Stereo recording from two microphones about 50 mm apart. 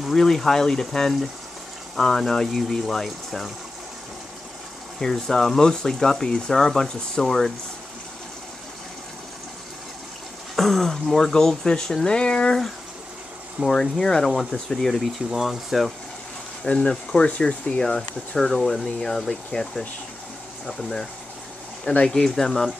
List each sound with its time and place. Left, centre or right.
0.0 s speech: centre
5.0 s speech: centre
10.5 s speech: centre
13.7 s speech: centre
15.1 s speech: centre
16.6 s speech: centre
22.2 s speech: centre